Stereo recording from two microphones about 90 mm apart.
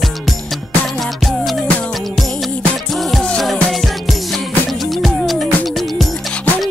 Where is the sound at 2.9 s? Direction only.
Centre (ahead or behind).